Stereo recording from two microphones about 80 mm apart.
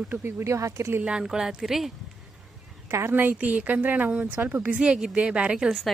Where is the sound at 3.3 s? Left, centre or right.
Centre.